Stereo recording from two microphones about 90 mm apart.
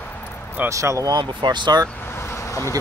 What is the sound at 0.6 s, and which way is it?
Speech, 35° right (ahead or behind).